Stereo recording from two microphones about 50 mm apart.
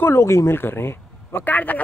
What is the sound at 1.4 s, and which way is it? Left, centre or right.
Speech, left.